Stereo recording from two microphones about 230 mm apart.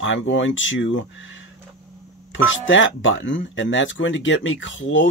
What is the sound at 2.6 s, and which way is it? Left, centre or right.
Speech, left.